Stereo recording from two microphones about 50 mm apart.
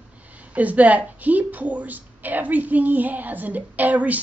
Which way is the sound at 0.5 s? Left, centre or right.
Right.